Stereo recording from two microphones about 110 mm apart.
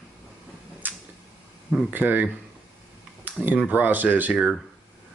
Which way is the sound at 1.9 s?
15° right (ahead or behind).